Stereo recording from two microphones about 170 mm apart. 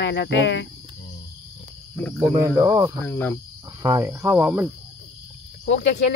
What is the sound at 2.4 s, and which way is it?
Speech, 20° right (ahead or behind).